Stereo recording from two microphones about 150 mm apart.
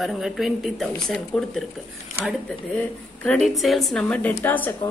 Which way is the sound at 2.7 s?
5° left (ahead or behind).